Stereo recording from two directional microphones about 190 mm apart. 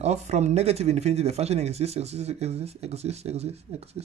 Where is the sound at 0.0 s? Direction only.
35° right (ahead or behind).